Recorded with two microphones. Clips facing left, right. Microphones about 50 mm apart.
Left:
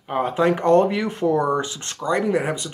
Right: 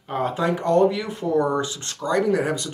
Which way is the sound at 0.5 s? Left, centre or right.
Left.